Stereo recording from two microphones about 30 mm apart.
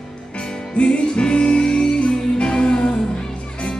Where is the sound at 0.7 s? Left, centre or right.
Left.